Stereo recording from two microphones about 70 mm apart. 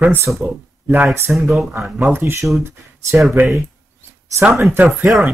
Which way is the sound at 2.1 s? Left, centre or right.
Right.